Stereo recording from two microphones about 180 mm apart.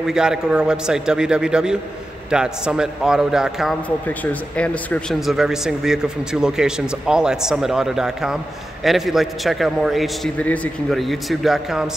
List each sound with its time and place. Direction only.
0.0 s speech: 5° right (ahead or behind)
4.2 s speech: 10° left (ahead or behind)